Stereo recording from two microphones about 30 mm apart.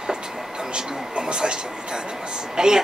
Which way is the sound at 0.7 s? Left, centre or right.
Right.